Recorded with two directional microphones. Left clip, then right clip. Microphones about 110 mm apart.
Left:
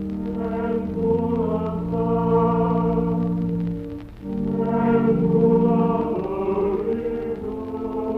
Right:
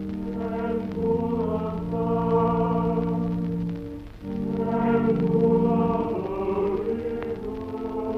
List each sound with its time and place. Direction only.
1.2 s music: 30° right (ahead or behind)
4.6 s music: 25° right (ahead or behind)